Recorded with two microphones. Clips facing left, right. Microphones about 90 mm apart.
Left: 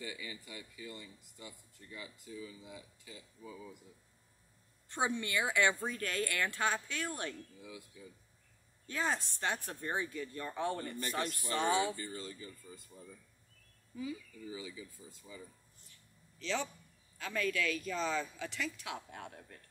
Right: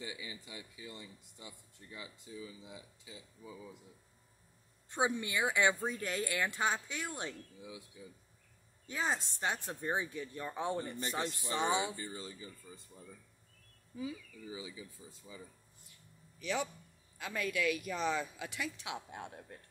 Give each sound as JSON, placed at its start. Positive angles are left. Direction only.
{"t": 0.0, "sound": "speech", "side_deg": -20}
{"t": 4.8, "sound": "speech", "side_deg": -10}
{"t": 8.8, "sound": "speech", "side_deg": -15}
{"t": 13.9, "sound": "a man's voice", "side_deg": -20}